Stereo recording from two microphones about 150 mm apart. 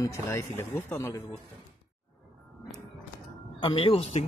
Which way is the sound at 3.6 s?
35° left (ahead or behind).